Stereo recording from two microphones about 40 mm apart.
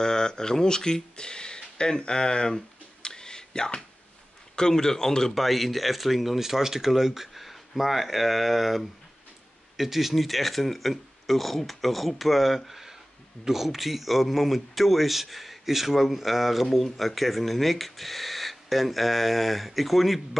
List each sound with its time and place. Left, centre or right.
0.0 s a man's voice: centre
5.3 s speech: centre